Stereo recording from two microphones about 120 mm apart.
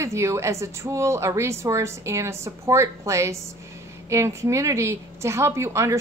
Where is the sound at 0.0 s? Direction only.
25° right (ahead or behind).